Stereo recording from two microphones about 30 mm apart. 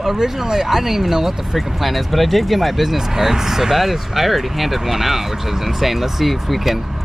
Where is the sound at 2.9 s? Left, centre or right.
Centre.